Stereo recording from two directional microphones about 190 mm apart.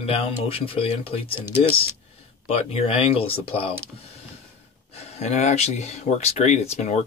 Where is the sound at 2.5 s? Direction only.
30° left (ahead or behind).